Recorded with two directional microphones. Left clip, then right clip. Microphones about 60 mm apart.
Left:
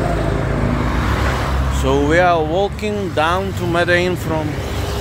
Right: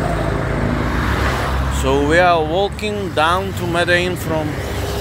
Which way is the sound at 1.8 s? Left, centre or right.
Left.